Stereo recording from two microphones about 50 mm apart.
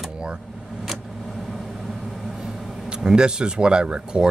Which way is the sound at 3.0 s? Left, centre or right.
Centre.